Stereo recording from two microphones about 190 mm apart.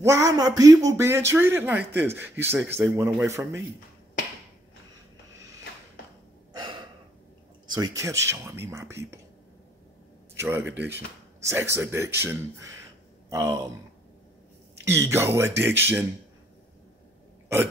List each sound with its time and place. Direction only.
0.0 s speech: 15° right (ahead or behind)
6.5 s gasp: 25° right (ahead or behind)
7.6 s speech: 20° right (ahead or behind)
10.3 s speech: 10° right (ahead or behind)
14.9 s speech: 15° right (ahead or behind)